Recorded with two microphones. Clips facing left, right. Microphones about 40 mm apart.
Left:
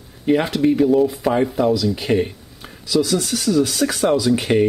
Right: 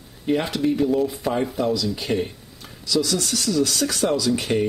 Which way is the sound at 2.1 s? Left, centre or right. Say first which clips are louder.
Left 5 dB; centre.